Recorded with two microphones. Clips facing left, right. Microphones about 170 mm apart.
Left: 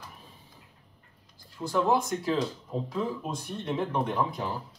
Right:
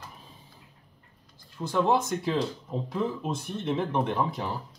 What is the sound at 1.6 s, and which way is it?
Speech, 20° right (ahead or behind).